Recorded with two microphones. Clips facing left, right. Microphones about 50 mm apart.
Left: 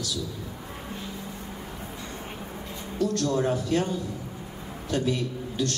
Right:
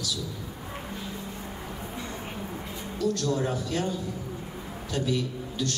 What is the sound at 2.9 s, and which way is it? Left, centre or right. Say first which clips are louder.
A man's voice: left 2 dB; left.